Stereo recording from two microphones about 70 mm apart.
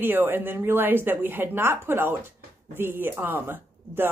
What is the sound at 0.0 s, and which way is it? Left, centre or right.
Speech, right.